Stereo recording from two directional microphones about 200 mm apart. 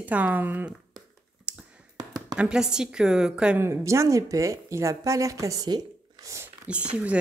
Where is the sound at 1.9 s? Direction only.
20° right (ahead or behind).